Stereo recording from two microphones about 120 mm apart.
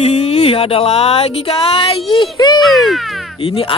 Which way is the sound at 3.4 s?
50° left (ahead or behind).